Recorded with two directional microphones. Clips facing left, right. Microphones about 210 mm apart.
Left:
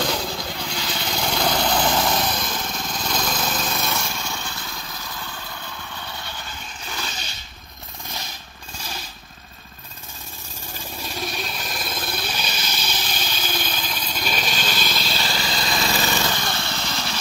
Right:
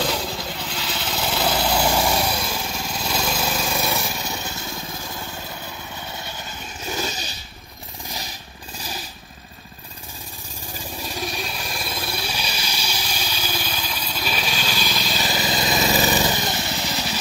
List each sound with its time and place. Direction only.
0.0 s vehicle: 5° right (ahead or behind)
4.3 s lawn mower: 20° right (ahead or behind)
6.0 s vehicle: 15° right (ahead or behind)
7.0 s a sound: 40° right (ahead or behind)
11.0 s vehicle: 10° right (ahead or behind)